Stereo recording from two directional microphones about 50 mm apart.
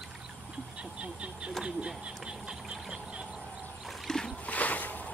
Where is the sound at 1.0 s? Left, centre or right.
Right.